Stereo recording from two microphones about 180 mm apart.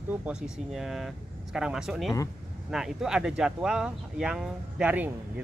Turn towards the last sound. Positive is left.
turn(degrees=-10)  # may be behind; listen again after turning